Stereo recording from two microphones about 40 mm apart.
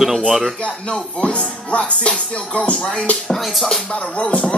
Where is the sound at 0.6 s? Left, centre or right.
Left.